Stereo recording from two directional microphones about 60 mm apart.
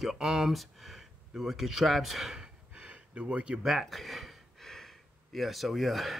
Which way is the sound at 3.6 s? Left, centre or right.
Centre.